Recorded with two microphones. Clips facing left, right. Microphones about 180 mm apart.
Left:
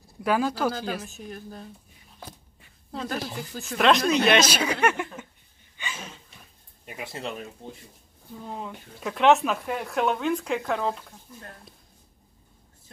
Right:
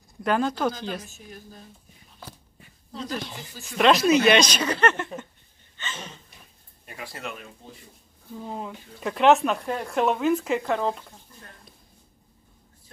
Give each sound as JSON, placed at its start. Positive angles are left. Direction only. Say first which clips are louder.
{"t": 0.2, "sound": "speech", "louder": "even", "side_deg": 5}
{"t": 1.1, "sound": "a woman's voice", "louder": "left 5 dB", "side_deg": 60}
{"t": 2.9, "sound": "speech", "louder": "left 1 dB", "side_deg": 60}
{"t": 3.7, "sound": "speech", "louder": "right 2 dB", "side_deg": 0}
{"t": 5.8, "sound": "gasp", "louder": "right 1 dB", "side_deg": 10}
{"t": 6.9, "sound": "speech", "louder": "left 2 dB", "side_deg": 20}
{"t": 8.5, "sound": "speech", "louder": "right 1 dB", "side_deg": 0}